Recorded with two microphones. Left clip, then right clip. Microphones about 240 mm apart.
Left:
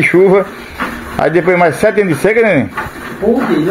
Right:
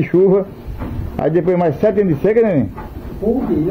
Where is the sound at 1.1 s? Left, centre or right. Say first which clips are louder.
Left 5 dB; centre.